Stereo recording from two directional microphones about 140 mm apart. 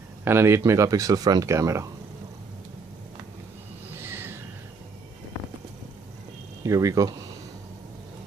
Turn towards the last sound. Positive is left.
turn(degrees=-25)  # may be behind; listen again after turning